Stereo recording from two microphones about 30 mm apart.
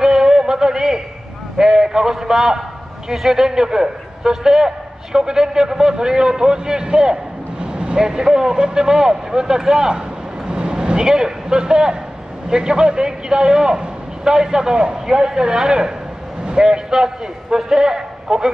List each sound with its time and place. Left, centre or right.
0.0 s a sound: centre
1.6 s a man's voice: right
7.6 s vehicle: right
8.6 s a man's voice: right